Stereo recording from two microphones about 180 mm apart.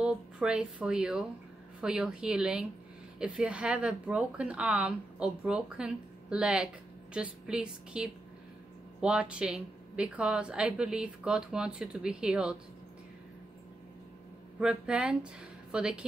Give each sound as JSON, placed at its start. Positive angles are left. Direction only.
{"t": 0.0, "sound": "a woman's voice", "side_deg": -5}
{"t": 14.6, "sound": "a woman's voice", "side_deg": -5}